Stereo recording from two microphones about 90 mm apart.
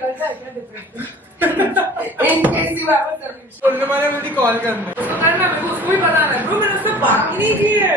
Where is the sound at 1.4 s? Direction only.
20° right (ahead or behind).